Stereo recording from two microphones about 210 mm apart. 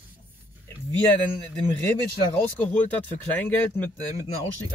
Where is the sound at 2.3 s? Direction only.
10° left (ahead or behind).